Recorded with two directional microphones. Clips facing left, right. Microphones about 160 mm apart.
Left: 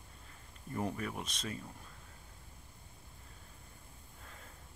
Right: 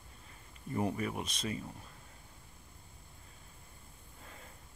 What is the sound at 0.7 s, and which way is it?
Speech, 5° right (ahead or behind).